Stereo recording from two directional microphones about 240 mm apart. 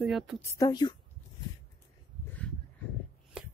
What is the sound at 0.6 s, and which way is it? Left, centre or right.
Speech, centre.